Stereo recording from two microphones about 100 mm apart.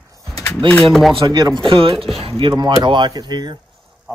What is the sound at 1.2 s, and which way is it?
Speech, 45° right (ahead or behind).